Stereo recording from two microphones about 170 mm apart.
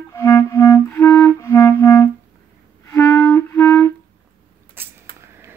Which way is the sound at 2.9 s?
15° left (ahead or behind).